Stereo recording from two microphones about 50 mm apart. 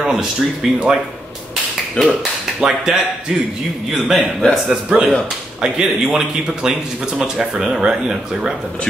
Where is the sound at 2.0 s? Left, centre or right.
Left.